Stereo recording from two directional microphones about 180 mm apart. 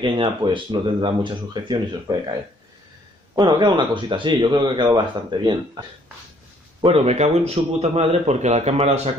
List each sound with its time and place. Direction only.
0.0 s speech: 25° right (ahead or behind)
3.3 s speech: 25° right (ahead or behind)
6.8 s a man's voice: 35° right (ahead or behind)